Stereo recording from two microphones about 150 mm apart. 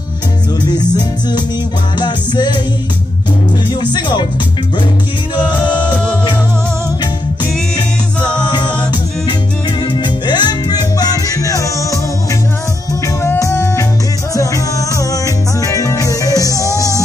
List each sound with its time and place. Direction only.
2.0 s music: 30° left (ahead or behind)
3.8 s music: 30° left (ahead or behind)
8.4 s a capella: 30° left (ahead or behind)
9.8 s music: 30° left (ahead or behind)
13.0 s music: 20° left (ahead or behind)